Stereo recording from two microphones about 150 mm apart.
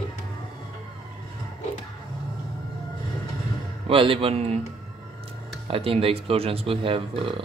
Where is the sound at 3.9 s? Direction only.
35° right (ahead or behind).